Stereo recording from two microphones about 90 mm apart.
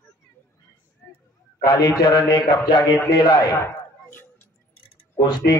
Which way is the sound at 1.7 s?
50° left (ahead or behind).